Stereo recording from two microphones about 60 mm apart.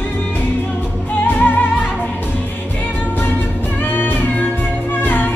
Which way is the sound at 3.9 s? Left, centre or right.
Left.